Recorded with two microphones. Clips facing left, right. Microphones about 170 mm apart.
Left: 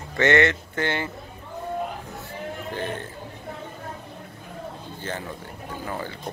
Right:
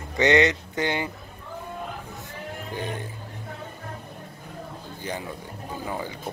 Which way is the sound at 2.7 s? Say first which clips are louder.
Left 1 dB; 15° right (ahead or behind).